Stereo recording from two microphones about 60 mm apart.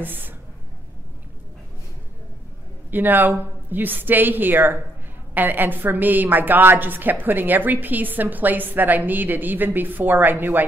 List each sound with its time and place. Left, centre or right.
0.0 s a woman's voice: right
2.9 s a woman's voice: right